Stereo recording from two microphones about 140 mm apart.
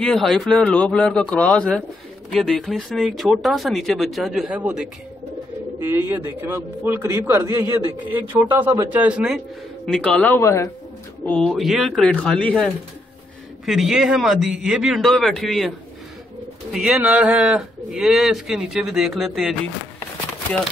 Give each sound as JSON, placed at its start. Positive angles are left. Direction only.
{"t": 0.0, "sound": "a man's voice", "side_deg": 5}
{"t": 9.8, "sound": "speech", "side_deg": 5}
{"t": 11.2, "sound": "a man's voice", "side_deg": 5}
{"t": 13.7, "sound": "a man's voice", "side_deg": 0}
{"t": 16.7, "sound": "a man's voice", "side_deg": -5}